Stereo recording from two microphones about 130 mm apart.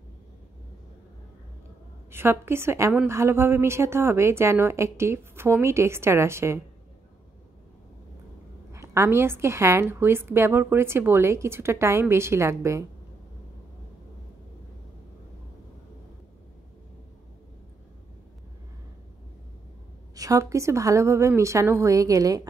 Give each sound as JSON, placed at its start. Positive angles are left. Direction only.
{"t": 2.0, "sound": "a woman's voice", "side_deg": -20}
{"t": 8.7, "sound": "a woman's voice", "side_deg": -20}
{"t": 20.2, "sound": "a woman's voice", "side_deg": -25}